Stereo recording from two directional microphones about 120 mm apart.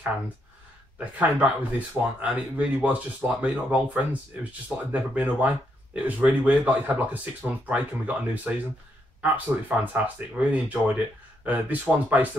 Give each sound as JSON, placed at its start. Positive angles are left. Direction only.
{"t": 0.9, "sound": "speech", "side_deg": -10}